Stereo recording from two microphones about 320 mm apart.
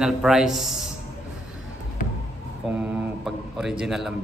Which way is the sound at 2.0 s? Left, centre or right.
Left.